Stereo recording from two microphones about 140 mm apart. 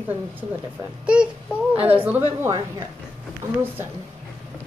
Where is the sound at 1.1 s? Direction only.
5° right (ahead or behind).